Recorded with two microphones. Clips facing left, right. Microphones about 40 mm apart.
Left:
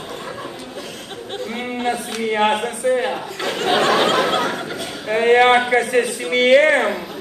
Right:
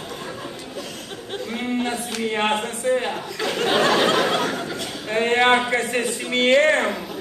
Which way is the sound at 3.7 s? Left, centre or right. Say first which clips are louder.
Left 3 dB; centre.